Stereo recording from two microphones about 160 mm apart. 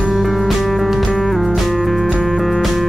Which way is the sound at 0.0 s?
Centre (ahead or behind).